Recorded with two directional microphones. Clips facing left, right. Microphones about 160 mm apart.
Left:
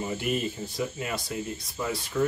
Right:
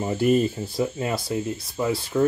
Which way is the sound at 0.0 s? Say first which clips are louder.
Right 9 dB; 40° right (ahead or behind).